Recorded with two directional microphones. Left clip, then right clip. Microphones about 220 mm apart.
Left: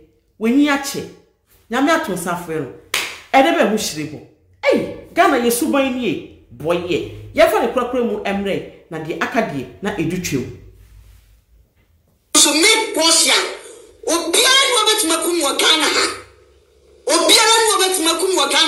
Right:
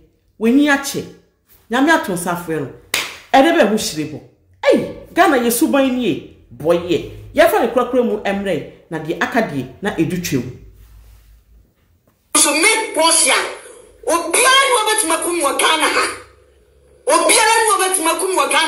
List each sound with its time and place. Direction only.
0.4 s speech: 10° right (ahead or behind)
12.3 s a sound: 60° left (ahead or behind)
14.0 s speech: 60° left (ahead or behind)